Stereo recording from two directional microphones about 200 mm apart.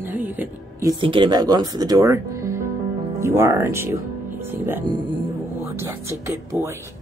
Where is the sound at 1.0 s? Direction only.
25° right (ahead or behind).